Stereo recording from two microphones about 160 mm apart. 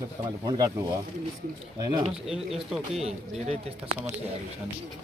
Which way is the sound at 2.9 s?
40° right (ahead or behind).